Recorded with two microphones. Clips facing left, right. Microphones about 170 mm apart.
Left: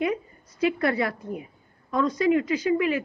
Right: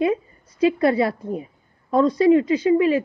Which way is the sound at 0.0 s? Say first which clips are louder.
Right 5 dB; 25° right (ahead or behind).